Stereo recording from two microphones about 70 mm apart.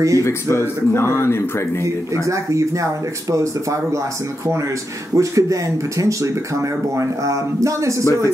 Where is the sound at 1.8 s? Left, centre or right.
Right.